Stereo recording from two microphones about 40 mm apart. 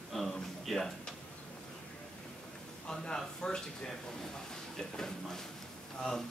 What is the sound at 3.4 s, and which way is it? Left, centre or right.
Speech, centre.